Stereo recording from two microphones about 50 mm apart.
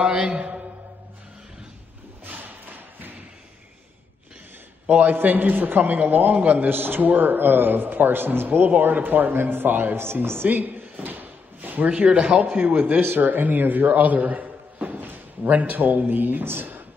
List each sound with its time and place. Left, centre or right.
0.0 s mantra: right
2.2 s a sound: right
4.8 s a man's voice: right
9.9 s speech: right
10.5 s speech: right
11.1 s drawer open or close: right
12.4 s a man's voice: right